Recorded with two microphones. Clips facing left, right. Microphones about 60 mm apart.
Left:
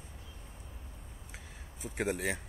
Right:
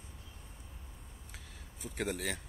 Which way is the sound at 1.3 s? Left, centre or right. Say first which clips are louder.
Left 3 dB; centre.